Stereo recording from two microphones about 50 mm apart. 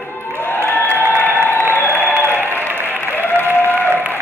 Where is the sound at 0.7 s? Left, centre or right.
Left.